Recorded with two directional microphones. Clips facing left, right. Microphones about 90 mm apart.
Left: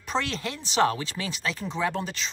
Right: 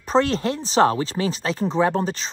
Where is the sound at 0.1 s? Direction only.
35° right (ahead or behind).